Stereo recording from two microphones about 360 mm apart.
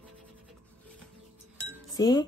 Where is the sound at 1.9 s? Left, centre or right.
Centre.